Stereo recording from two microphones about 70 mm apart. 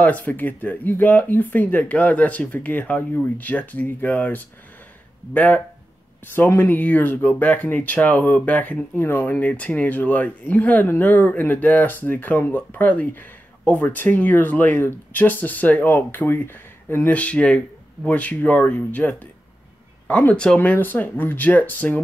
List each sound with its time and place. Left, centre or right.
0.0 s speech: left
17.1 s speech: centre